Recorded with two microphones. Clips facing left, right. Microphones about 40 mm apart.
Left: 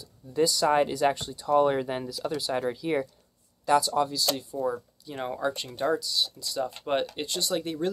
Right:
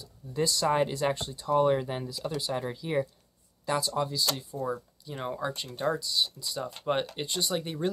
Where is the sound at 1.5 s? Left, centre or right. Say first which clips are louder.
Left 2 dB; centre.